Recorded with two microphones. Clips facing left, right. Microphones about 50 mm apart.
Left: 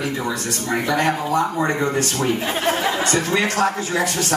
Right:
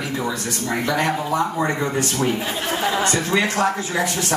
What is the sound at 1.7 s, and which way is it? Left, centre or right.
Speech, centre.